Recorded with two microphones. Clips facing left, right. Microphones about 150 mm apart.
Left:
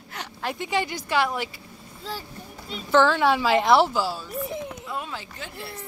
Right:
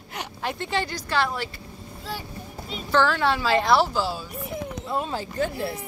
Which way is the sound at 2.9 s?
15° left (ahead or behind).